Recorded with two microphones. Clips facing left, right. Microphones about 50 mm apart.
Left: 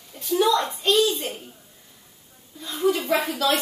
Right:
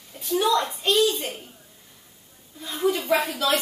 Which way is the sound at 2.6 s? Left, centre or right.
Centre.